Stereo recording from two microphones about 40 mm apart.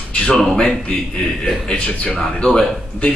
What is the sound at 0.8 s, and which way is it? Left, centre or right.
Speech, left.